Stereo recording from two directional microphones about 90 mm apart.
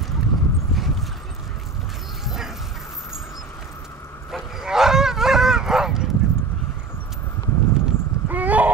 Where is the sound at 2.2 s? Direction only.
5° right (ahead or behind).